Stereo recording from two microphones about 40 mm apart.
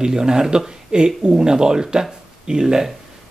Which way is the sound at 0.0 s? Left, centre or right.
Centre.